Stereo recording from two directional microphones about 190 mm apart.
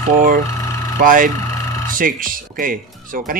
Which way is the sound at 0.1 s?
45° right (ahead or behind).